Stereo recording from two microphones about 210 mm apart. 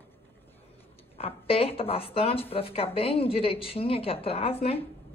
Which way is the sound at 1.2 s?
25° left (ahead or behind).